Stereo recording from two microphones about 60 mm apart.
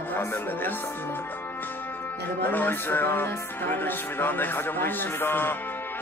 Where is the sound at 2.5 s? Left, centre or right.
Left.